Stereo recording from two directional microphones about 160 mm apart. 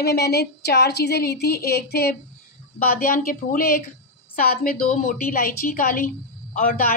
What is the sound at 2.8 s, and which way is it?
Speech, 65° left (ahead or behind).